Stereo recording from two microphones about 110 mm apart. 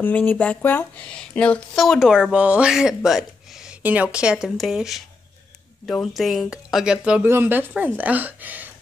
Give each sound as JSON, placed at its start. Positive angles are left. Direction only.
{"t": 0.0, "sound": "a woman's voice", "side_deg": 15}
{"t": 7.2, "sound": "a woman's voice", "side_deg": -20}